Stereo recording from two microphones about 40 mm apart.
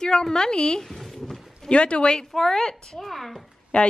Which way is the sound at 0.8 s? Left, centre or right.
Centre.